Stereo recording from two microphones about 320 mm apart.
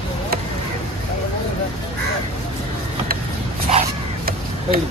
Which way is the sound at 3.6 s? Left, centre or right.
Right.